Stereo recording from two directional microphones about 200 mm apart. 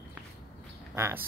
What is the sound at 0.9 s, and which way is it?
Speech, 10° right (ahead or behind).